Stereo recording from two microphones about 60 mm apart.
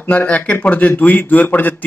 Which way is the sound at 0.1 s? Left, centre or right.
Left.